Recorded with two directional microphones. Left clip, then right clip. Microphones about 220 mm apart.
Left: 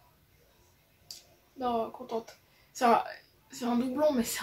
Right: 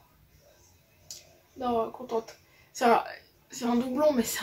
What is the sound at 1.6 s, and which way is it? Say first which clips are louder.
Speech: right 2 dB; 5° left (ahead or behind).